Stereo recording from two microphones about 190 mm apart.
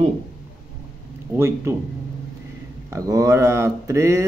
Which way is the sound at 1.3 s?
15° right (ahead or behind).